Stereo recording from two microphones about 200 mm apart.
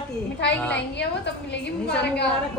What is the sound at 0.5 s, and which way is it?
Speech, 10° left (ahead or behind).